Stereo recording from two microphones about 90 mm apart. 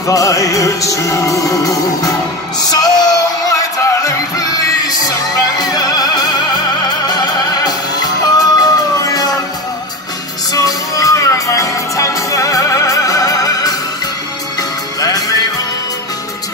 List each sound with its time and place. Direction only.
0.0 s music: 40° left (ahead or behind)
5.6 s music: 45° left (ahead or behind)
10.5 s music: 40° left (ahead or behind)
15.0 s music: 45° left (ahead or behind)